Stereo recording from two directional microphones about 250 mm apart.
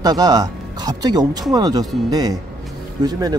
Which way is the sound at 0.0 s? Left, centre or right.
Centre.